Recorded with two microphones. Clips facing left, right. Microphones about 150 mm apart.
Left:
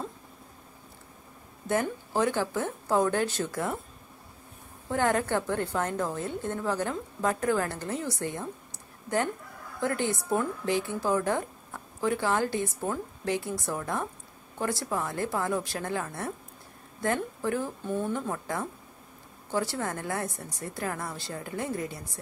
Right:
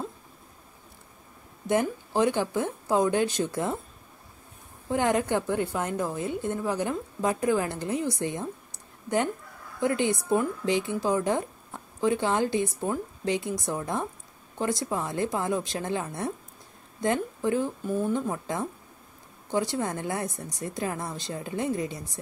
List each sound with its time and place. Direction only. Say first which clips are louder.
1.7 s a woman's voice: right 3 dB; 15° right (ahead or behind)
4.8 s a woman's voice: right 2 dB; 15° right (ahead or behind)
9.8 s a woman's voice: right 3 dB; 15° right (ahead or behind)